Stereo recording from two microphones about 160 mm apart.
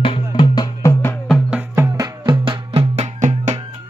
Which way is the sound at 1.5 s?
10° right (ahead or behind).